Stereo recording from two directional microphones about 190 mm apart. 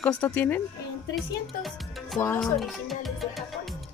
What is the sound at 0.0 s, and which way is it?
A woman's voice, 10° left (ahead or behind).